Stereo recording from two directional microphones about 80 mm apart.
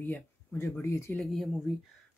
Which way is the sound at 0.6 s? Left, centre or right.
Left.